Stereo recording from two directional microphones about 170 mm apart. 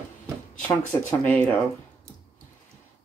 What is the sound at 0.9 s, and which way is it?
Speech, 10° left (ahead or behind).